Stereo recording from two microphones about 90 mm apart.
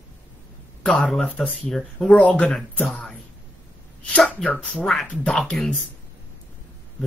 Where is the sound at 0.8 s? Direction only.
10° left (ahead or behind).